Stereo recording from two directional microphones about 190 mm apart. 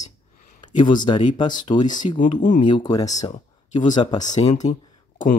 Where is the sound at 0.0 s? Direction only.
40° left (ahead or behind).